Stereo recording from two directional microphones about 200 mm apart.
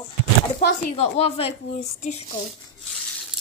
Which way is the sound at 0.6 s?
45° left (ahead or behind).